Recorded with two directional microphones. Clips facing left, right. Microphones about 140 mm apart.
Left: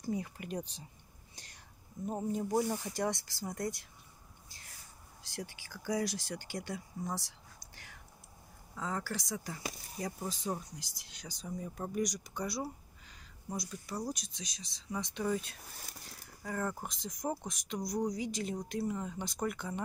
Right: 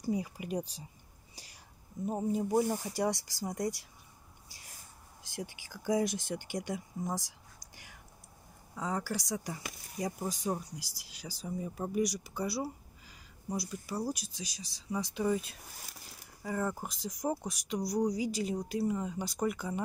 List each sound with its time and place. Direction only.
0.0 s speech: 10° right (ahead or behind)
1.3 s whispering: 5° right (ahead or behind)
2.0 s speech: 5° right (ahead or behind)
5.3 s speech: 15° right (ahead or behind)
7.7 s whispering: 15° right (ahead or behind)
8.7 s speech: 15° right (ahead or behind)